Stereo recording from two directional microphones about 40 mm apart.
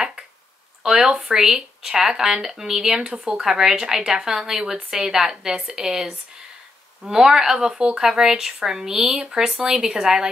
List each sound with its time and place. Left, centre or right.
0.8 s speech: centre